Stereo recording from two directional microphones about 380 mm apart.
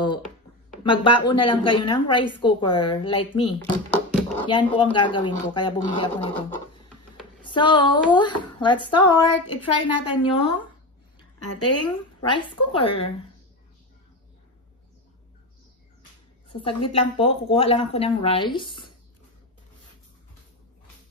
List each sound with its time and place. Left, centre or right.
0.8 s speech: centre
7.4 s speech: centre
11.4 s a woman's voice: left
12.3 s speech: centre
16.4 s a sound: centre
16.9 s speech: centre